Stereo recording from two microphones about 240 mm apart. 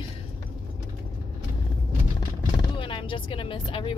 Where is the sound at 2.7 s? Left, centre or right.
Left.